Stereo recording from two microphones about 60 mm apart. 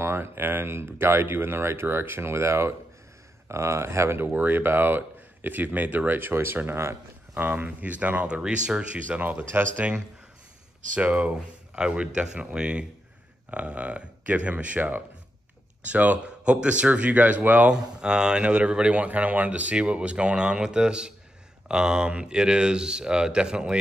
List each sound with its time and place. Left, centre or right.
0.0 s speech: right
4.2 s speech: right
9.4 s speech: right
11.0 s speech: right
17.7 s speech: centre